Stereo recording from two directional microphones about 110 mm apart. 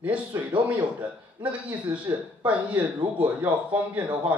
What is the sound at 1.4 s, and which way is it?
Speech, 10° right (ahead or behind).